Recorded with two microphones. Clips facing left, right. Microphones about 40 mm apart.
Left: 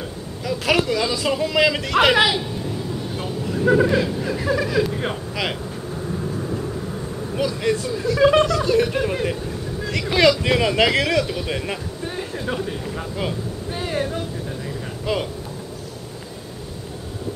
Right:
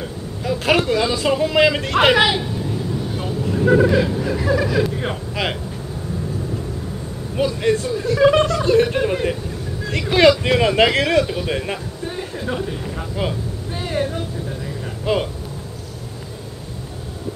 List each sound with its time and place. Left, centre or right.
0.4 s speech: right
3.3 s speech: centre
5.3 s speech: centre
7.3 s speech: centre
8.2 s speech: centre
8.6 s speech: centre
9.1 s a man's voice: centre
12.6 s a sound: centre
13.7 s vehicle: centre
15.1 s speech: right